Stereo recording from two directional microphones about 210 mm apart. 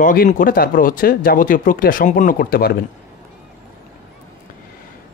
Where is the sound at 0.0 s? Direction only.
40° left (ahead or behind).